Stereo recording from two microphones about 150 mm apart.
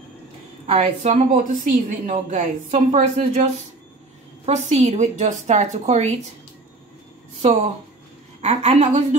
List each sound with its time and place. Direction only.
0.7 s a woman's voice: 45° right (ahead or behind)
4.5 s a woman's voice: 50° right (ahead or behind)
8.4 s a woman's voice: 45° right (ahead or behind)